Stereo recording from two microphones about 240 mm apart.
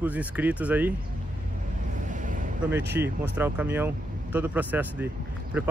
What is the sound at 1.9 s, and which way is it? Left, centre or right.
Vehicle, right.